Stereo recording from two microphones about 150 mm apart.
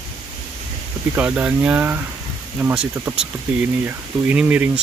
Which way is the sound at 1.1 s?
10° right (ahead or behind).